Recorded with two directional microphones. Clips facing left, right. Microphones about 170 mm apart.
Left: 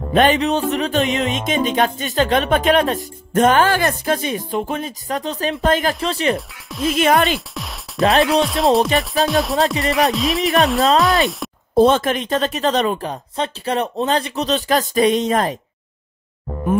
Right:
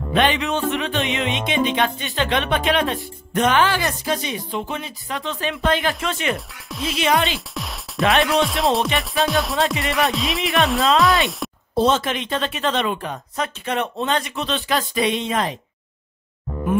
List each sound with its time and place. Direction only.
0.1 s music: 45° left (ahead or behind)
6.3 s speech: centre (ahead or behind)
6.9 s music: 50° left (ahead or behind)
7.3 s music: centre (ahead or behind)
8.2 s speech: centre (ahead or behind)
11.7 s a woman's voice: 50° left (ahead or behind)